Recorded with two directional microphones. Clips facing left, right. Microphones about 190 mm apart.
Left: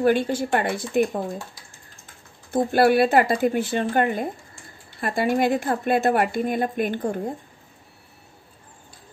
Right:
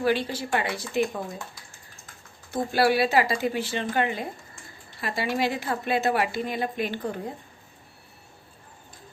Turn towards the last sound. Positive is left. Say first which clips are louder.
# left 5 dB
turn(degrees=50)  # may be behind; listen again after turning